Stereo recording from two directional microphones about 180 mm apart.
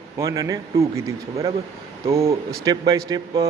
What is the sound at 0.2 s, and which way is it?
A man's voice, 20° right (ahead or behind).